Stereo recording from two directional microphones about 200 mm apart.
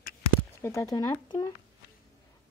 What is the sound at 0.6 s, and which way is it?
Speech, 15° left (ahead or behind).